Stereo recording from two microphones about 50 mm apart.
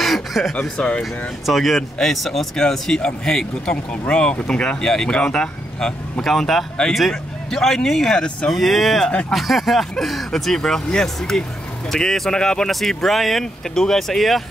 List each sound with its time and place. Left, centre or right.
0.0 s a sound: centre
0.6 s speech: centre
1.4 s speech: centre
8.5 s speech: centre